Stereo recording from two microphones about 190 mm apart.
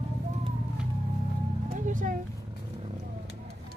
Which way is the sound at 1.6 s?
45° right (ahead or behind).